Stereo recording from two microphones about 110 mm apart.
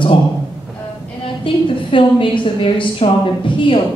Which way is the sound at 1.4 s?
50° left (ahead or behind).